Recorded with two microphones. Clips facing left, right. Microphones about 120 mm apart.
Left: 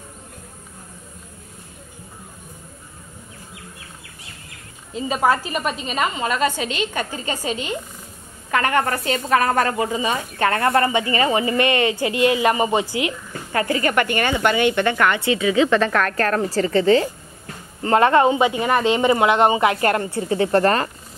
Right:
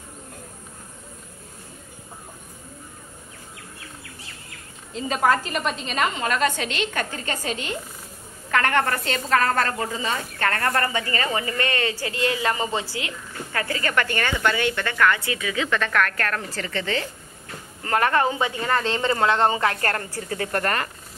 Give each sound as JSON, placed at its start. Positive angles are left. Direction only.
{"t": 4.9, "sound": "a woman's voice", "side_deg": 5}
{"t": 17.8, "sound": "a woman's voice", "side_deg": 25}